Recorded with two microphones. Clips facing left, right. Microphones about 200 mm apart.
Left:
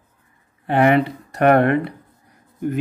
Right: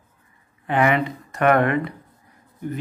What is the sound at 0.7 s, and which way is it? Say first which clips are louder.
Speech: left 4 dB; 45° left (ahead or behind).